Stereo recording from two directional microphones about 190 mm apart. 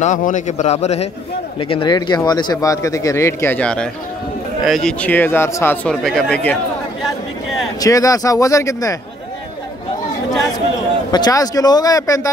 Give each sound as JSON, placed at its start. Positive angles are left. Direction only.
{"t": 0.0, "sound": "a man's voice", "side_deg": 40}
{"t": 7.8, "sound": "speech", "side_deg": 15}
{"t": 11.1, "sound": "speech", "side_deg": 20}